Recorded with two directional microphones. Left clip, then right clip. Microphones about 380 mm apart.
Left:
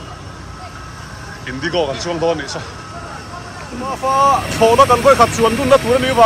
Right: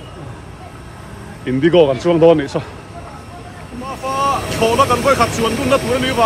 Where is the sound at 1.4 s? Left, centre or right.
Centre.